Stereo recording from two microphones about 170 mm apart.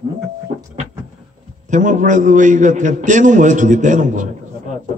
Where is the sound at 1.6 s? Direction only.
45° right (ahead or behind).